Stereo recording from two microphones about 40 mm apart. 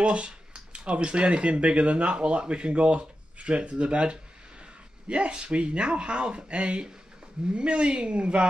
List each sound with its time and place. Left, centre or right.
0.0 s speech: right